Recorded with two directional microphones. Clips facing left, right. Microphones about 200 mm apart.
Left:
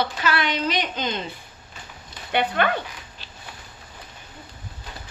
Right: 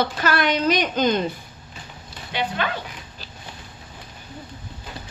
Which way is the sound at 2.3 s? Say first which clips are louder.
Left 4 dB; 55° left (ahead or behind).